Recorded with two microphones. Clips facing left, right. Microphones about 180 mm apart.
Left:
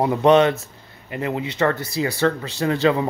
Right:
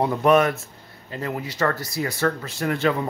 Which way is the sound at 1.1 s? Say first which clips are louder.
Left 4 dB; 15° left (ahead or behind).